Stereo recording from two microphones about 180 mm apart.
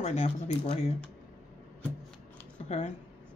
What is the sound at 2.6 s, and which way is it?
Speech, 35° left (ahead or behind).